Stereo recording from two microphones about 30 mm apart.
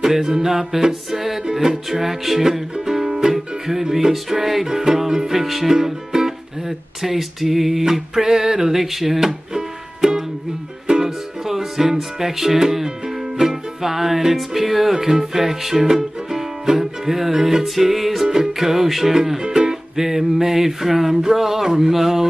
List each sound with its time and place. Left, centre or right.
0.0 s music: centre
5.4 s speech: centre
9.5 s music: right